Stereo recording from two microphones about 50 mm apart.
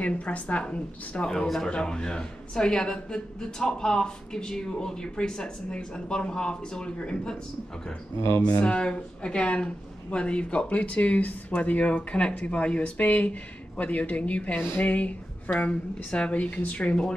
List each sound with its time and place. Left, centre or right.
0.0 s speech: left
1.3 s a woman's voice: centre
8.4 s speech: left